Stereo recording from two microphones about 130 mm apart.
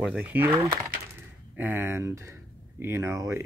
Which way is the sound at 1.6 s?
15° right (ahead or behind).